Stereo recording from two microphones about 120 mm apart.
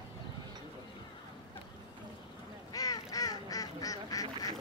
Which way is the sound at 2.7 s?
30° left (ahead or behind).